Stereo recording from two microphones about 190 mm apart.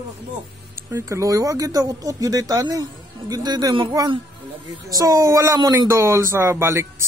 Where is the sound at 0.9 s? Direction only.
15° right (ahead or behind).